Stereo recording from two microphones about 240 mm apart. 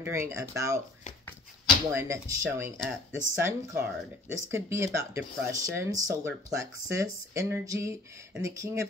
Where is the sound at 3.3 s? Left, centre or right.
Centre.